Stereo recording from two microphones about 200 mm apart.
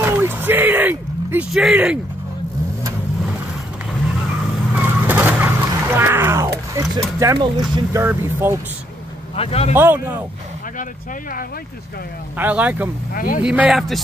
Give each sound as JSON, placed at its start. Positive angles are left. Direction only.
{"t": 0.0, "sound": "a sound", "side_deg": -10}
{"t": 4.7, "sound": "vehicle", "side_deg": -10}
{"t": 7.2, "sound": "speech", "side_deg": -15}
{"t": 9.3, "sound": "speech", "side_deg": 30}
{"t": 9.8, "sound": "speech", "side_deg": -10}
{"t": 12.4, "sound": "speech", "side_deg": -10}
{"t": 13.1, "sound": "speech", "side_deg": 45}
{"t": 13.4, "sound": "speech", "side_deg": -5}